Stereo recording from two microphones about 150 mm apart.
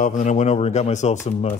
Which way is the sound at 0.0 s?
55° left (ahead or behind).